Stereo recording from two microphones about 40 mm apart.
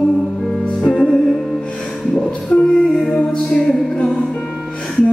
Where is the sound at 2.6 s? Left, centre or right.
Left.